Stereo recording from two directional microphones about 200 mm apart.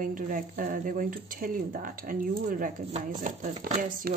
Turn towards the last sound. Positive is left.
turn(degrees=-40)  # may be behind; listen again after turning